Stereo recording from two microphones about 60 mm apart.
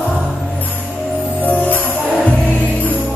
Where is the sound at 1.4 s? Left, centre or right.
Left.